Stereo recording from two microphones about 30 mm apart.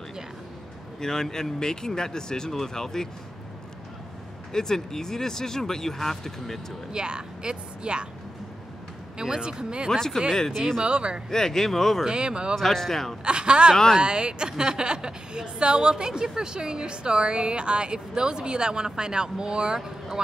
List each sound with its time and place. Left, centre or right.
1.0 s speech: centre
4.5 s speech: centre
6.9 s a woman's voice: right
9.2 s a woman's voice: right
9.8 s speech: centre
10.8 s a woman's voice: right
11.2 s speech: centre
12.1 s a woman's voice: right
12.5 s speech: centre
13.2 s a woman's voice: right